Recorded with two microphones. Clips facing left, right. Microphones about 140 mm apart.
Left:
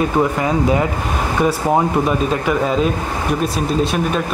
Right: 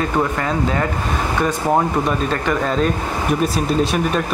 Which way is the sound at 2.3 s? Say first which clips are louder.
Left 2 dB; 5° left (ahead or behind).